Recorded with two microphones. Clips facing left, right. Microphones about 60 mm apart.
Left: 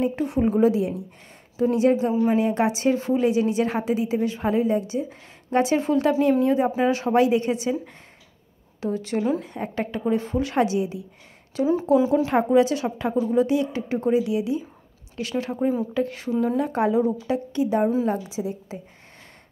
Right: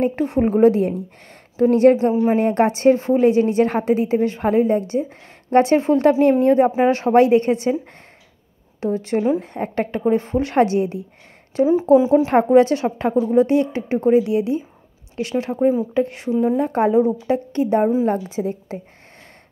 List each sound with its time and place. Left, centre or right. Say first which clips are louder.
0.2 s a woman's voice: right 6 dB; right
11.5 s a woman's voice: right 6 dB; right
12.3 s a woman's voice: right 5 dB; right
15.9 s a woman's voice: right 5 dB; right
16.6 s a woman's voice: right 5 dB; right